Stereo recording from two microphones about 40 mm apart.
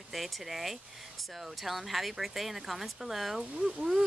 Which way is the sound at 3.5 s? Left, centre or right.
Right.